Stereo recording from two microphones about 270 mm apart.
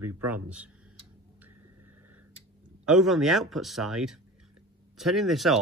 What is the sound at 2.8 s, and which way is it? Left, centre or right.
Speech, centre.